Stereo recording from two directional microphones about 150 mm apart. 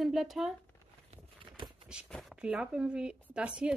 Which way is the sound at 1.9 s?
5° right (ahead or behind).